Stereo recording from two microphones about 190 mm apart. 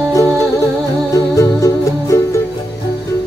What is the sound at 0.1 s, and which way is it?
Music, 15° left (ahead or behind).